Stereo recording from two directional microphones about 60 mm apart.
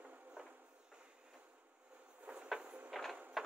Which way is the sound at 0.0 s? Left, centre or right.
Right.